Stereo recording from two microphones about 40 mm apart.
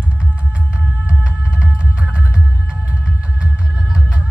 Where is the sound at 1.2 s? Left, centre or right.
Right.